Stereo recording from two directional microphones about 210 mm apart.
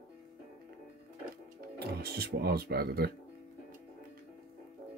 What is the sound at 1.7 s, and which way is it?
Speech, 50° right (ahead or behind).